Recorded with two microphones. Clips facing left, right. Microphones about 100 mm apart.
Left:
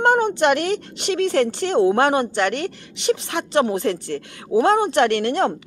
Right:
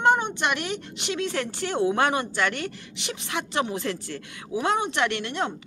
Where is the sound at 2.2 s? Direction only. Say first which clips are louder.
Left 6 dB; 60° left (ahead or behind).